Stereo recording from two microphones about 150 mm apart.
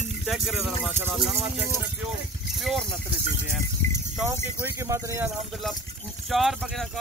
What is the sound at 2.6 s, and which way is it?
Speech, centre (ahead or behind).